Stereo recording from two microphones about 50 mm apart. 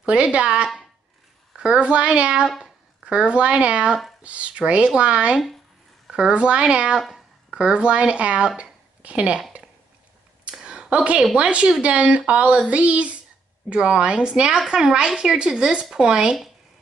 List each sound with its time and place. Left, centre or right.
0.0 s a woman's voice: right
10.6 s a sound: centre
11.3 s speech: right